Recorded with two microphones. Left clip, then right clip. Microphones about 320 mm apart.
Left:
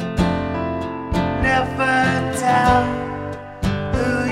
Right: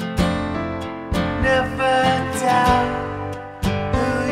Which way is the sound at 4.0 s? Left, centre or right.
Centre.